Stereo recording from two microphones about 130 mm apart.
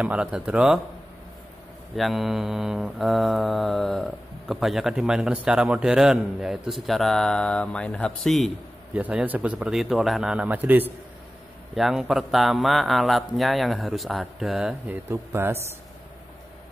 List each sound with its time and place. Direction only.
0.0 s speech: 10° right (ahead or behind)
2.0 s mantra: centre (ahead or behind)
8.9 s speech: 10° right (ahead or behind)
11.7 s mantra: centre (ahead or behind)
14.9 s speech: 15° right (ahead or behind)